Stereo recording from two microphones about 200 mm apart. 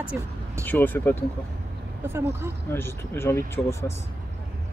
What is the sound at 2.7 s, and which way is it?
Speech, 10° left (ahead or behind).